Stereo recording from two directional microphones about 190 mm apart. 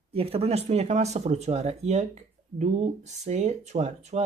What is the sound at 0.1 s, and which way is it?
Speech, 30° right (ahead or behind).